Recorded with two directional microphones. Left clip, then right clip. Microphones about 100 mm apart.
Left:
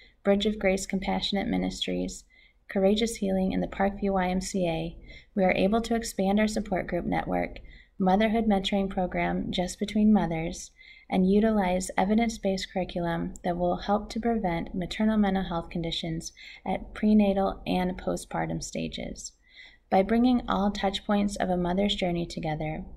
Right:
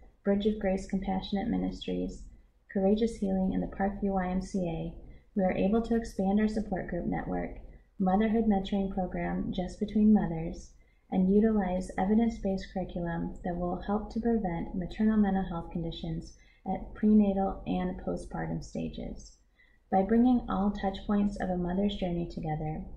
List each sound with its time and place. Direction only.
0.2 s a woman's voice: 25° left (ahead or behind)